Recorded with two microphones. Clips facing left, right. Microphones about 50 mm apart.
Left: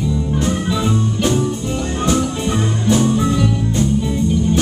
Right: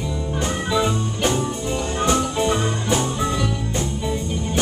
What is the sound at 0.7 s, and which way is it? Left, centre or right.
Music, centre.